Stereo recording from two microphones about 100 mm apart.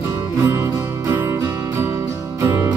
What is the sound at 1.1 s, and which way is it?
Music, 20° right (ahead or behind).